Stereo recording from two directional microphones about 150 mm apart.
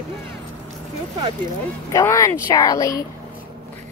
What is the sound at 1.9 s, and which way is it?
Speech, 20° left (ahead or behind).